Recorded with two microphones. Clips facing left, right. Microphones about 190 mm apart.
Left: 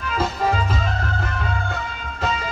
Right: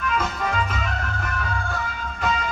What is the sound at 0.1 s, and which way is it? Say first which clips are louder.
Music: left 6 dB; 30° left (ahead or behind).